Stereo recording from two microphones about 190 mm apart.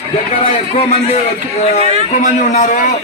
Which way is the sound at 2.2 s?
40° left (ahead or behind).